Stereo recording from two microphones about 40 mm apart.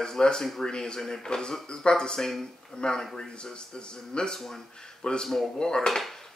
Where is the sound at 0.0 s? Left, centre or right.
Centre.